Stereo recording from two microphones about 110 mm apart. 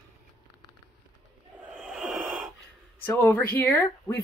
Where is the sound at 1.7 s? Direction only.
5° right (ahead or behind).